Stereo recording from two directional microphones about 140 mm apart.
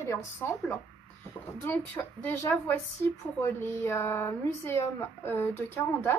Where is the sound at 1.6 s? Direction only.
15° left (ahead or behind).